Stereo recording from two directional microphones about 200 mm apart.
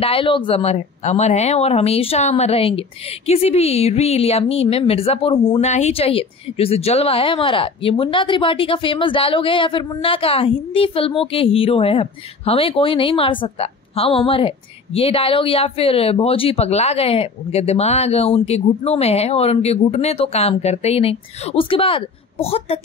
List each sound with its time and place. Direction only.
0.0 s a woman's voice: 25° left (ahead or behind)